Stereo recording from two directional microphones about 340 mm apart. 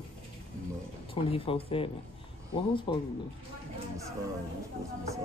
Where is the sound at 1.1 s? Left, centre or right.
Centre.